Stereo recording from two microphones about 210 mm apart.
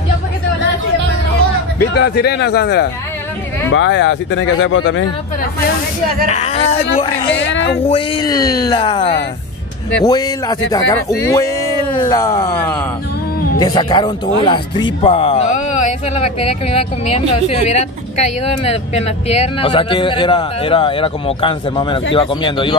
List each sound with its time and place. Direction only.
2.0 s speech: 50° left (ahead or behind)
6.2 s speech: 30° left (ahead or behind)
7.3 s speech: 60° left (ahead or behind)
7.8 s speech: 25° left (ahead or behind)